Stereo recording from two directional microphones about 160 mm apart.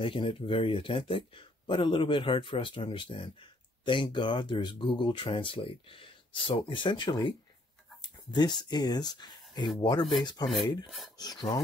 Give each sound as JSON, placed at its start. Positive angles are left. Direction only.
{"t": 0.0, "sound": "speech", "side_deg": 30}
{"t": 11.1, "sound": "filing", "side_deg": 25}